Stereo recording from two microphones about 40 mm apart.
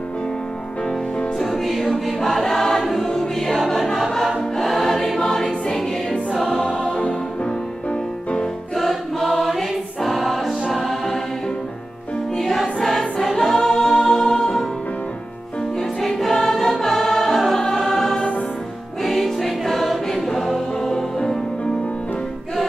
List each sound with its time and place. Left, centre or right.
1.4 s music: centre
2.8 s choir: centre
6.3 s choir: centre
6.9 s music: left
8.7 s choir: centre
12.4 s choir: centre
13.6 s a capella: centre
14.4 s music: centre
16.0 s choir: centre
17.2 s music: centre
17.7 s choir: centre
18.1 s music: left
19.0 s music: centre